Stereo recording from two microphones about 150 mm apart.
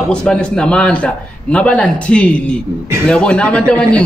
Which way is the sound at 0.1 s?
5° left (ahead or behind).